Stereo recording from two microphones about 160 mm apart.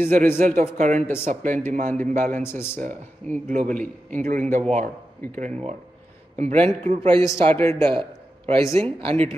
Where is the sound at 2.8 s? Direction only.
50° right (ahead or behind).